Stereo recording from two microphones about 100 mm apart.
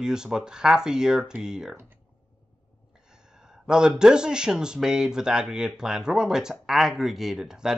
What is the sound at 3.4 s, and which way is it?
Speech, 5° right (ahead or behind).